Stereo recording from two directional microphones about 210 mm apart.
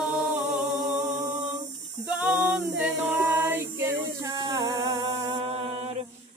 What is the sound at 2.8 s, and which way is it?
Music, 10° right (ahead or behind).